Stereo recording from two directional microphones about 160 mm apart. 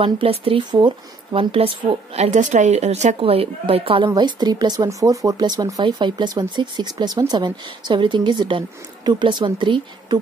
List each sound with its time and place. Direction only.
0.0 s speech: 35° right (ahead or behind)